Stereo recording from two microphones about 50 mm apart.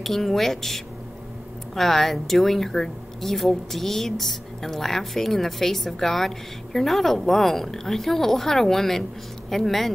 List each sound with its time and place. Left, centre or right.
0.0 s a woman's voice: centre